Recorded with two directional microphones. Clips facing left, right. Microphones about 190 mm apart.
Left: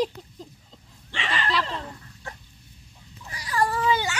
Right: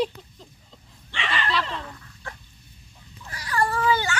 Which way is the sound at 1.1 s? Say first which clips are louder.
Even; 40° left (ahead or behind).